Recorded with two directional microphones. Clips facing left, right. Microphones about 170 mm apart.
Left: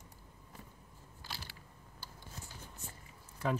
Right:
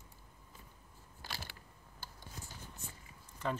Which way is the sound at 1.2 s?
60° right (ahead or behind).